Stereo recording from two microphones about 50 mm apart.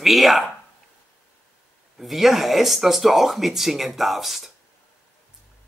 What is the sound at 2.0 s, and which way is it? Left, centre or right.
Speech, centre.